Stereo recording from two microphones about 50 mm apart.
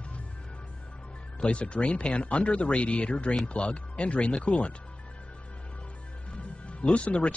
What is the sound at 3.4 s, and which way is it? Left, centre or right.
Music, left.